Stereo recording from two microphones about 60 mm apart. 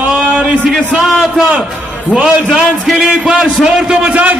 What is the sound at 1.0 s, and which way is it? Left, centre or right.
Speech, centre.